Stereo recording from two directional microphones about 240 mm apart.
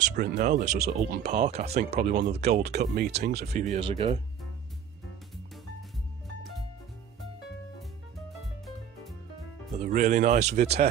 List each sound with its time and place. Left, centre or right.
0.1 s speech: right
2.0 s speech: right
2.5 s speech: right
8.3 s music: centre
9.8 s speech: right